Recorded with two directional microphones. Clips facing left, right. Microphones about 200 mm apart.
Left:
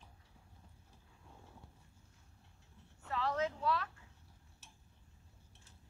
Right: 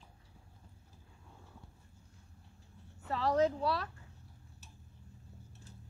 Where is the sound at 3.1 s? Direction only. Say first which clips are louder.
Right 6 dB; 35° right (ahead or behind).